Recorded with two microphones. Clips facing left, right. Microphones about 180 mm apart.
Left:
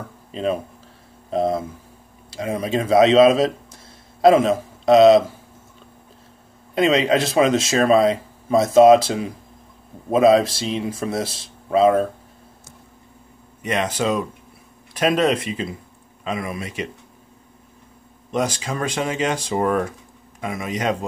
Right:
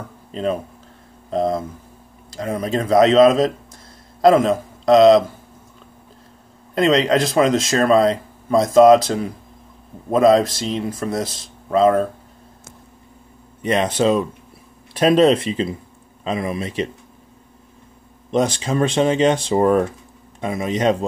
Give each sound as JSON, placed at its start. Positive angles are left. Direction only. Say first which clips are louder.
{"t": 0.3, "sound": "a man's voice", "louder": "right 1 dB", "side_deg": 5}
{"t": 6.7, "sound": "a man's voice", "louder": "right 1 dB", "side_deg": 5}
{"t": 13.6, "sound": "speech", "louder": "right 4 dB", "side_deg": -35}
{"t": 18.3, "sound": "speech", "louder": "right 4 dB", "side_deg": -30}